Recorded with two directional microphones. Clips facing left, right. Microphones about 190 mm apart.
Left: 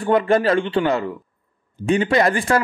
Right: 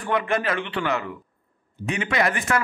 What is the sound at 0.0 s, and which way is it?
A man's voice, 35° left (ahead or behind).